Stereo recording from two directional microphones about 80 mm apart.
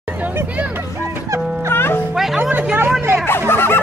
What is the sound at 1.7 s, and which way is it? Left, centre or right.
Music, left.